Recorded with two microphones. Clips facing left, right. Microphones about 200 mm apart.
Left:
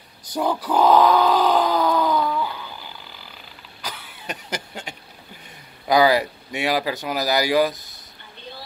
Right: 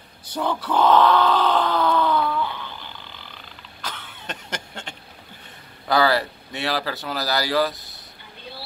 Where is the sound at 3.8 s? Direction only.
10° left (ahead or behind).